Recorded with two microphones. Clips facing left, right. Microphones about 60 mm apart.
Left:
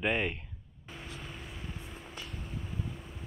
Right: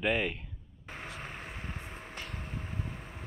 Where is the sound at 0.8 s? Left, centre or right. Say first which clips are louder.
Right 3 dB; right.